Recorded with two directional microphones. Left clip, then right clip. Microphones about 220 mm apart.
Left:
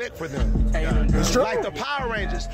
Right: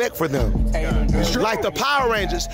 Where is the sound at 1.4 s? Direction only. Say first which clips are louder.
Right 3 dB; 45° right (ahead or behind).